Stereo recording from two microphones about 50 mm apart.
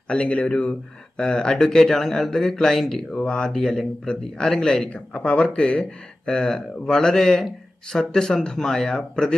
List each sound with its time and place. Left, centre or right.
0.1 s speech: left
3.2 s speech: centre
4.8 s speech: left